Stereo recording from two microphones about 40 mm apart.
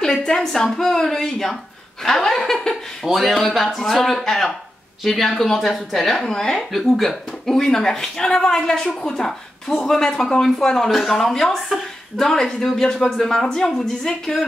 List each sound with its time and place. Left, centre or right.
0.0 s a sound: centre
0.7 s a woman's voice: centre
6.7 s a woman's voice: centre